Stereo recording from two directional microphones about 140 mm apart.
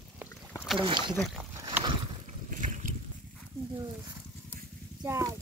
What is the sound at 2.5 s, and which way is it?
Boat, 65° right (ahead or behind).